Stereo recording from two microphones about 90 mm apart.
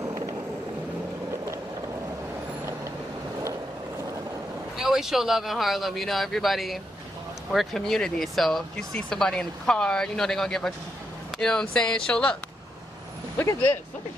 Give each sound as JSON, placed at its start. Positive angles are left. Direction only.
{"t": 0.0, "sound": "vehicle", "side_deg": -35}
{"t": 4.7, "sound": "speech", "side_deg": -5}